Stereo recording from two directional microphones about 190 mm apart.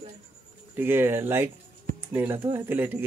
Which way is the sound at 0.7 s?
10° right (ahead or behind).